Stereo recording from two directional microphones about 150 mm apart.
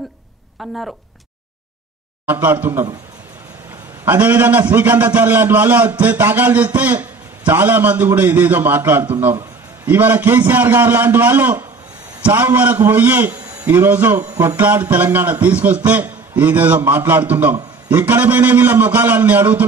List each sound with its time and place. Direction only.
0.6 s speech: centre (ahead or behind)
2.2 s a man's voice: 15° right (ahead or behind)
4.0 s a man's voice: 15° right (ahead or behind)